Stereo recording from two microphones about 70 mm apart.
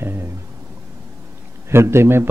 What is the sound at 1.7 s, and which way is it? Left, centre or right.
Speech, right.